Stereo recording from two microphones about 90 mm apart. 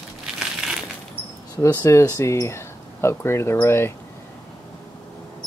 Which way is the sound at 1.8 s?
35° left (ahead or behind).